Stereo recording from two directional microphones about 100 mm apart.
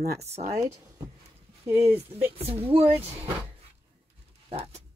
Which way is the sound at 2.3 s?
75° right (ahead or behind).